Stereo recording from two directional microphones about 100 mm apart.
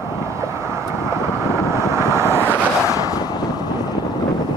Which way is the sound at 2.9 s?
35° left (ahead or behind).